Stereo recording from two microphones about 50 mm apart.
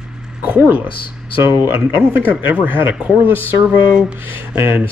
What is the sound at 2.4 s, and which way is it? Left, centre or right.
Speech, right.